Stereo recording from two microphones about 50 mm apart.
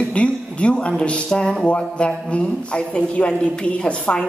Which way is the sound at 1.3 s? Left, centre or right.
Centre.